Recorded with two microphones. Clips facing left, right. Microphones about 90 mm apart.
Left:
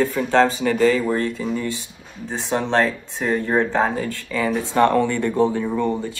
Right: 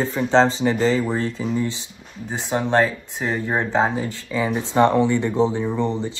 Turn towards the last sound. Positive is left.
turn(degrees=-20)  # may be behind; listen again after turning